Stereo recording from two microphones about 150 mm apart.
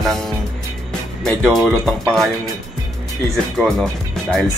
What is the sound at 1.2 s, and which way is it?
Speech, centre (ahead or behind).